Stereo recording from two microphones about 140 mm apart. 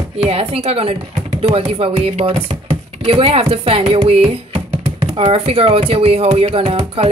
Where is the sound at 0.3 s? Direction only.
45° right (ahead or behind).